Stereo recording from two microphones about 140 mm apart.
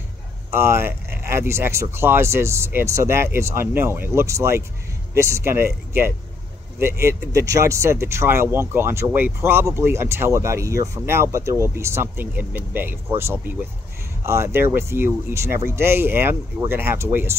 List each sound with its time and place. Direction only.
0.5 s speech: 15° right (ahead or behind)